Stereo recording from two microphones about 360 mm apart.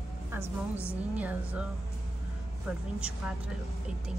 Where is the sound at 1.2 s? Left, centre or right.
Centre.